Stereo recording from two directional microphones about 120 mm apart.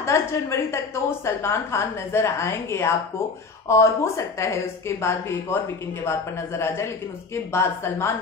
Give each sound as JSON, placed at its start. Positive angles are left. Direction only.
{"t": 0.0, "sound": "a woman's voice", "side_deg": 25}